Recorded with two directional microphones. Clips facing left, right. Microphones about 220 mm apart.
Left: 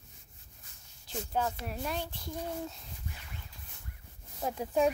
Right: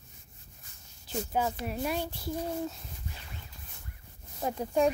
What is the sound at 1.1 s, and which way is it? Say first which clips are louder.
A child's voice: right 3 dB; 5° right (ahead or behind).